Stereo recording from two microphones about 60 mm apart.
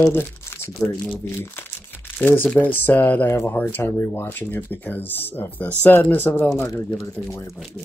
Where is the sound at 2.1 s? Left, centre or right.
Left.